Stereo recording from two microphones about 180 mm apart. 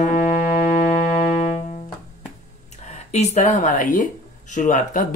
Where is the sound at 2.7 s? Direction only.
40° left (ahead or behind).